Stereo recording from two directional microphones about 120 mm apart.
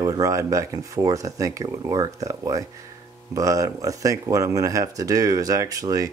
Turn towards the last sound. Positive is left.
turn(degrees=-30)  # may be behind; listen again after turning